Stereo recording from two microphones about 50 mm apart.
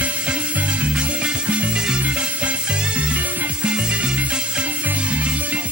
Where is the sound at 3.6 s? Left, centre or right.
Centre.